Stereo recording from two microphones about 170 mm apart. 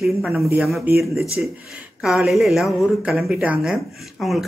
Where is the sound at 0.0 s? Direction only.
Centre (ahead or behind).